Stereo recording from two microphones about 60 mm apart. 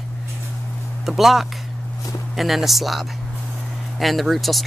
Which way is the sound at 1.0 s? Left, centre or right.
Centre.